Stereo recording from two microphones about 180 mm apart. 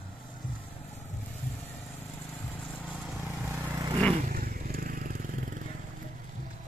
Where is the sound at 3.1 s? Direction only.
10° right (ahead or behind).